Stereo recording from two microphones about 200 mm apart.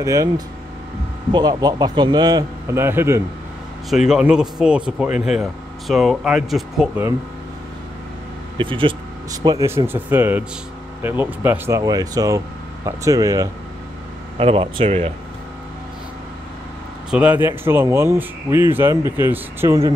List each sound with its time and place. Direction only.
0.0 s speech: 15° right (ahead or behind)
1.3 s a man's voice: 20° right (ahead or behind); by 7.1 s centre (ahead or behind)
8.5 s speech: 25° right (ahead or behind)
14.4 s a man's voice: 25° right (ahead or behind)
17.1 s speech: 5° right (ahead or behind)